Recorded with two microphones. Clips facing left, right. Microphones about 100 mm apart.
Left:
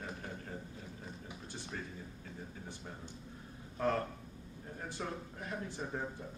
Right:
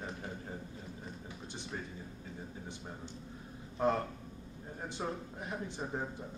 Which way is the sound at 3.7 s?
20° right (ahead or behind).